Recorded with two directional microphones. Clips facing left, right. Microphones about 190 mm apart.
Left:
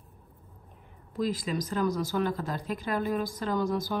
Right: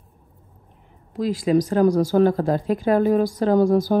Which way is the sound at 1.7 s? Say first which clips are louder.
Right 11 dB; 45° right (ahead or behind).